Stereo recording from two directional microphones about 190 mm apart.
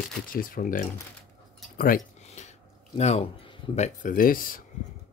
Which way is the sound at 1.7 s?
45° left (ahead or behind).